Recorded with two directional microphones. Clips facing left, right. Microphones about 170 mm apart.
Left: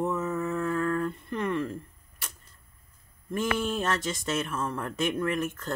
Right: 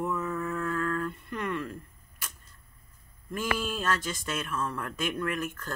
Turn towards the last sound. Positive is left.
turn(degrees=25)  # may be behind; listen again after turning